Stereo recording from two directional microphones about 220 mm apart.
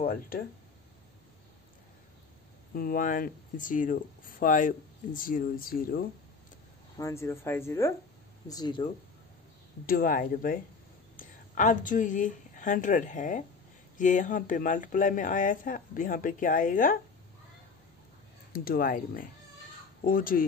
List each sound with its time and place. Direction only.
0.0 s speech: 40° left (ahead or behind)
2.7 s speech: 40° left (ahead or behind)
7.0 s speech: 15° left (ahead or behind)
9.8 s speech: 40° left (ahead or behind)
18.5 s speech: 40° left (ahead or behind)